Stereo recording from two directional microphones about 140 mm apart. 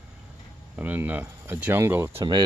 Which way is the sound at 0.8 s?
15° right (ahead or behind).